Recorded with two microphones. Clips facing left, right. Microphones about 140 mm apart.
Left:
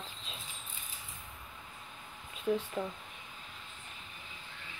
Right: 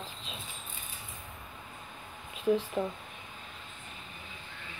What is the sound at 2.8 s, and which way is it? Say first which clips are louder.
Speech: right 4 dB; 15° right (ahead or behind).